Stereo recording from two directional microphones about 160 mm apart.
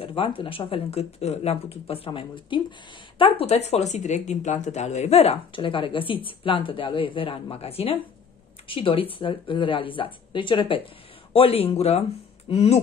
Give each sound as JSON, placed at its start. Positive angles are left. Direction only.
{"t": 0.0, "sound": "speech", "side_deg": 35}